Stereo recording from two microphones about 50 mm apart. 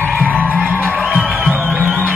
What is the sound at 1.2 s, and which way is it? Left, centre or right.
Music, centre.